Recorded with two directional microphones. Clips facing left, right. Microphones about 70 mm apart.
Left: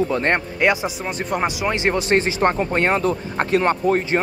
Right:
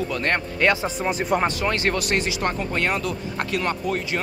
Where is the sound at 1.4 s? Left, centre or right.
Centre; by 4.2 s left.